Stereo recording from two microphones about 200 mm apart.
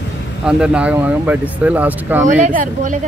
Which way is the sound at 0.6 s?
5° right (ahead or behind).